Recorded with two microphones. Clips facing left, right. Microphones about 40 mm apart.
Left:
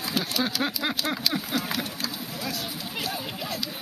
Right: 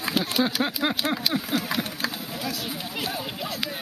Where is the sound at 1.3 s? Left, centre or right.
Right.